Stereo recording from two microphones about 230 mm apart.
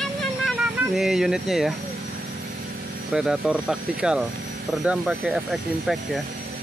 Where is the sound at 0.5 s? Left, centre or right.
Centre.